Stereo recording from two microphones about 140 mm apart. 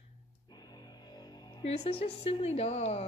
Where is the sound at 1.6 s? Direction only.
45° left (ahead or behind).